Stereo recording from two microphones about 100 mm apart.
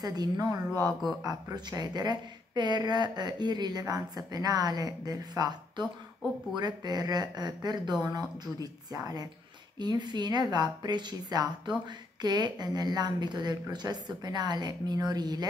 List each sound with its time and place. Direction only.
0.0 s speech: 40° right (ahead or behind)